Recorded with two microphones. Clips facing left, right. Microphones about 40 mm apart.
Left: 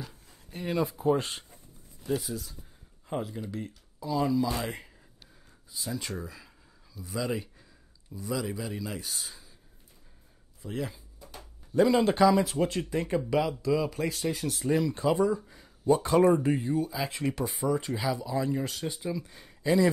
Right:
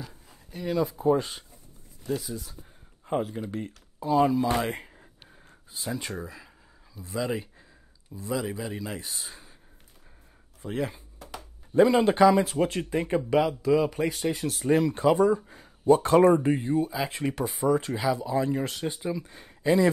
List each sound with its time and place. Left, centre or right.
0.0 s a sound: centre
0.5 s speech: left
2.0 s speech: centre
3.1 s speech: right
4.8 s a sound: right
5.9 s a sound: centre
7.1 s a man's voice: centre
10.6 s speech: right
11.1 s a sound: right
11.7 s speech: right
14.7 s speech: right
16.2 s speech: centre
16.4 s speech: right
17.5 s speech: centre